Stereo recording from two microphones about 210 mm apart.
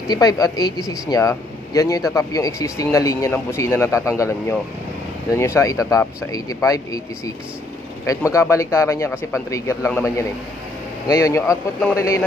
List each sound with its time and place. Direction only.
0.1 s speech: 20° left (ahead or behind)
11.1 s speech: 15° left (ahead or behind)